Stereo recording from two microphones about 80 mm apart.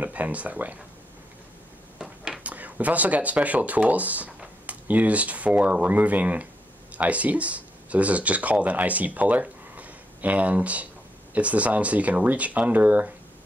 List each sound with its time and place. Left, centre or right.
0.0 s speech: centre
2.0 s a sound: centre
2.5 s speech: centre